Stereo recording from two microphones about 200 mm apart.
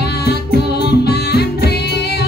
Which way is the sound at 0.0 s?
55° left (ahead or behind).